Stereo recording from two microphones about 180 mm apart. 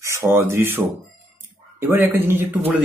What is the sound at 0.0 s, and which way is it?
Speech, 15° right (ahead or behind).